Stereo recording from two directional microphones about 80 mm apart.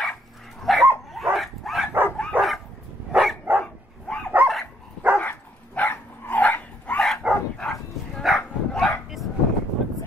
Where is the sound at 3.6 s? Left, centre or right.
Centre.